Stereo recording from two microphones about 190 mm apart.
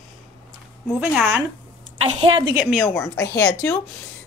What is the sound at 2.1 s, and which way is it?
Speech, 30° right (ahead or behind).